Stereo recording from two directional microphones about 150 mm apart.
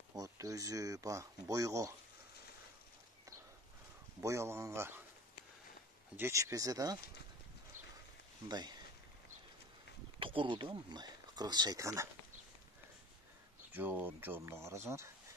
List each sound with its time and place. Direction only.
0.1 s speech: 25° right (ahead or behind)
4.2 s speech: 20° right (ahead or behind)
6.1 s speech: 15° right (ahead or behind)
8.5 s speech: 25° right (ahead or behind)
10.1 s speech: 35° right (ahead or behind); by 12.1 s 20° right (ahead or behind)
13.7 s speech: 10° right (ahead or behind)